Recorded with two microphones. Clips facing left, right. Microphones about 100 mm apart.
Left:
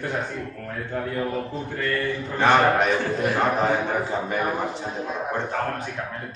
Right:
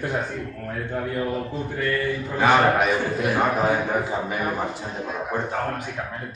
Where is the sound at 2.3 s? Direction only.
5° right (ahead or behind).